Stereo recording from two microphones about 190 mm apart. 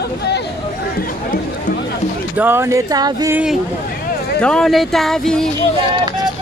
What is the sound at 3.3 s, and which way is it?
Speech, 5° right (ahead or behind).